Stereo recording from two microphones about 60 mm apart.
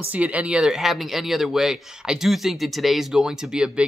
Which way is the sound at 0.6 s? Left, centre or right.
Centre.